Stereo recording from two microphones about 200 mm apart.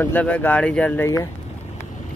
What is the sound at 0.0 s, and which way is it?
Speech, 10° left (ahead or behind).